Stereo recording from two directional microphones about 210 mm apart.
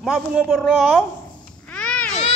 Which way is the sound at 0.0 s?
Centre (ahead or behind).